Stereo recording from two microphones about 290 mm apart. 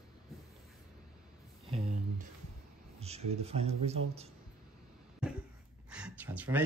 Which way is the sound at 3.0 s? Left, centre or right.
Right.